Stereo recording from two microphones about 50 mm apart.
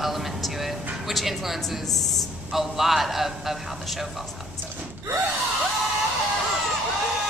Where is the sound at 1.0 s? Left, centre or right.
Centre.